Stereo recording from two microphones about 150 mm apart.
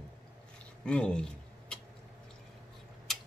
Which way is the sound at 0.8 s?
5° left (ahead or behind).